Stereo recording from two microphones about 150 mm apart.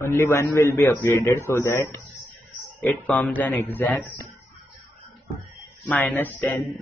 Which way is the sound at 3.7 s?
10° left (ahead or behind).